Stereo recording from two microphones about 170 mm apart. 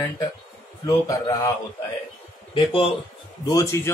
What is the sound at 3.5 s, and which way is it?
Speech, 20° left (ahead or behind).